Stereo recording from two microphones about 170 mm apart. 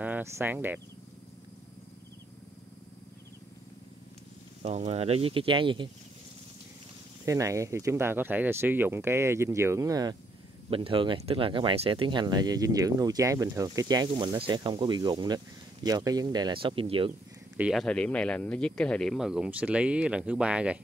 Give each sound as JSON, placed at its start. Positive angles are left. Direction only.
{"t": 0.0, "sound": "speech", "side_deg": -10}
{"t": 4.6, "sound": "speech", "side_deg": -40}
{"t": 7.2, "sound": "speech", "side_deg": -20}
{"t": 10.7, "sound": "speech", "side_deg": -30}
{"t": 17.6, "sound": "speech", "side_deg": 0}